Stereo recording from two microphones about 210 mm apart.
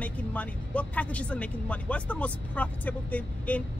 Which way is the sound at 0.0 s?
5° left (ahead or behind).